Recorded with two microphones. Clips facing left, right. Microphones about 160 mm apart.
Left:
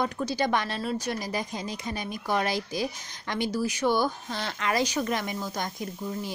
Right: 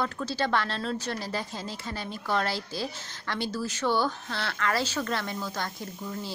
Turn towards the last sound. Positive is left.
turn(degrees=15)  # may be behind; listen again after turning